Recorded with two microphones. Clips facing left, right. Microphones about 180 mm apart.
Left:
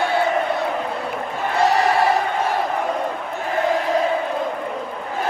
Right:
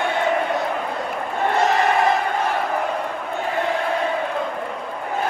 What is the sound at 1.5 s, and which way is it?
Crowd, 35° left (ahead or behind).